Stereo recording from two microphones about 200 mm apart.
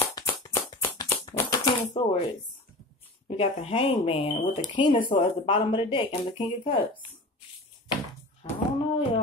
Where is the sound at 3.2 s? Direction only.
30° left (ahead or behind).